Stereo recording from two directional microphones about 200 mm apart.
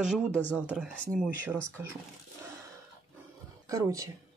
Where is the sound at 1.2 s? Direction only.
10° right (ahead or behind).